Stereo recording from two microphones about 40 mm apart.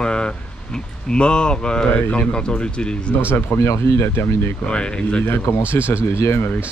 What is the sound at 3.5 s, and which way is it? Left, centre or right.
Speech, left.